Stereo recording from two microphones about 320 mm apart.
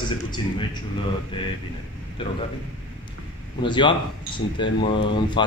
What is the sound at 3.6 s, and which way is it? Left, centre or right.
A man's voice, centre.